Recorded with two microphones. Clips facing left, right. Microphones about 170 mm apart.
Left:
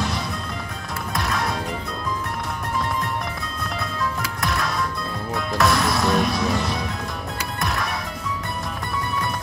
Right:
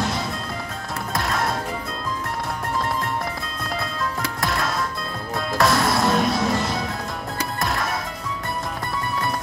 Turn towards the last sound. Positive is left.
turn(degrees=-20)  # may be behind; listen again after turning